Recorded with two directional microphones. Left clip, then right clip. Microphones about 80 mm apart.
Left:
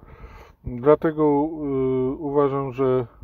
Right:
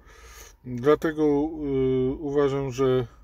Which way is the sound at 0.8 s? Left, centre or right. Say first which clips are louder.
Left 4 dB; left.